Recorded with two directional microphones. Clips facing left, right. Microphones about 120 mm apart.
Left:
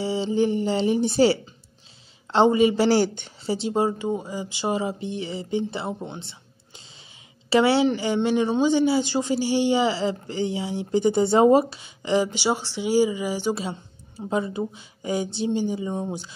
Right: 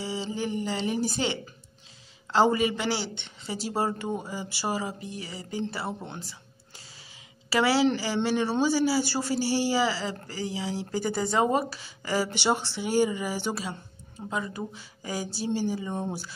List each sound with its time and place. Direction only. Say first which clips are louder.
0.0 s a woman's voice: left 9 dB; 30° left (ahead or behind); by 3.5 s 45° left (ahead or behind)
3.5 s speech: left 5 dB; 20° left (ahead or behind)
7.4 s speech: left 4 dB; 25° left (ahead or behind)
13.6 s speech: left 4 dB; 30° left (ahead or behind)